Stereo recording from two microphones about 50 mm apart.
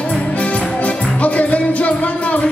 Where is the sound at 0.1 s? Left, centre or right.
Left.